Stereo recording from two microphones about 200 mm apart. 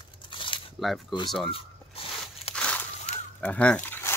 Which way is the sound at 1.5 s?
30° left (ahead or behind).